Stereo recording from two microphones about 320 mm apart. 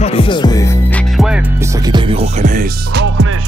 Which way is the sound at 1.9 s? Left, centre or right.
Centre.